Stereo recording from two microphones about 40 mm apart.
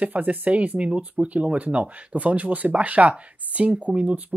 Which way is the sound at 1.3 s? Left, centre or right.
Right.